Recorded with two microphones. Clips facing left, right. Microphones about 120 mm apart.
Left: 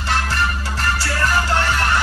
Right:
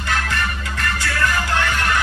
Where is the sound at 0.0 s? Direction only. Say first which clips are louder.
Left 2 dB; 30° left (ahead or behind).